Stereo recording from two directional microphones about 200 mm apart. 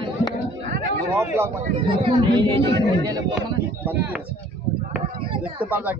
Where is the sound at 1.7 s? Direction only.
25° right (ahead or behind).